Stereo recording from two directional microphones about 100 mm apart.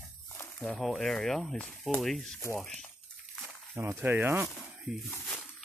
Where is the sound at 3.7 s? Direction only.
25° right (ahead or behind).